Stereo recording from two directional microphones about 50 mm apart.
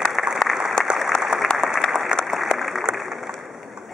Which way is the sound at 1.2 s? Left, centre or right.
Centre.